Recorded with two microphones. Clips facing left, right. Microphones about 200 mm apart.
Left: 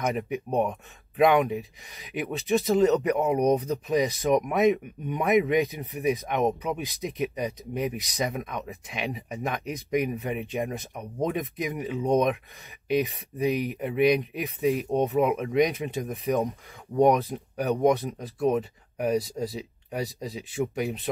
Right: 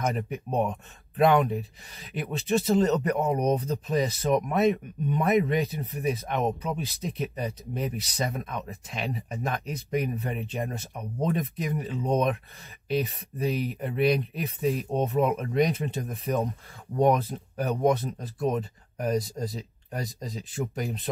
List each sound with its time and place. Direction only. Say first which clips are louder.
0.0 s speech: left 2 dB; 15° left (ahead or behind)